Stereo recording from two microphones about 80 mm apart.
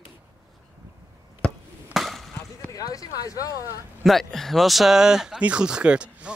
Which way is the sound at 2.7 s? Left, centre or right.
Left.